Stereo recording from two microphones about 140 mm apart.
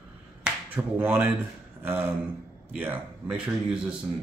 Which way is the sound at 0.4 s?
15° right (ahead or behind).